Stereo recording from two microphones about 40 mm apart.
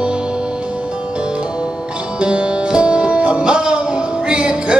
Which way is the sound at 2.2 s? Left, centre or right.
Right.